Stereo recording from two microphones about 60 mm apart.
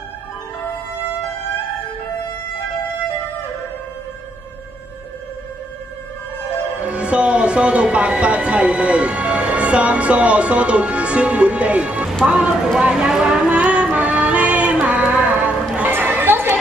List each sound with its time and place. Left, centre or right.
6.8 s speech: centre
13.9 s music: right
15.9 s chatter: right